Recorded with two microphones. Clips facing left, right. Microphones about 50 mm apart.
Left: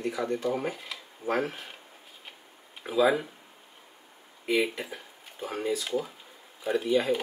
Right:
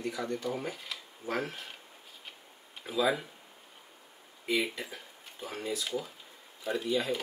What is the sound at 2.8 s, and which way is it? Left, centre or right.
Speech, centre.